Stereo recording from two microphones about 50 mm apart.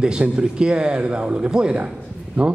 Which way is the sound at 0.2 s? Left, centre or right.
Centre.